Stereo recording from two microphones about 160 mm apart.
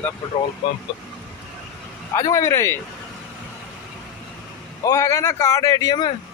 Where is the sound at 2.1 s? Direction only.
20° left (ahead or behind).